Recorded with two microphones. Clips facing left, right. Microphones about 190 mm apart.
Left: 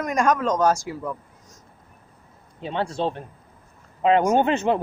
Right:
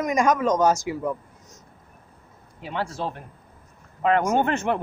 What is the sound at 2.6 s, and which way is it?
Speech, 25° left (ahead or behind).